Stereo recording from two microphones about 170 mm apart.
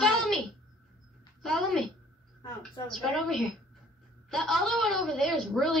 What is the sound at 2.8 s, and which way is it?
A woman's voice, centre (ahead or behind).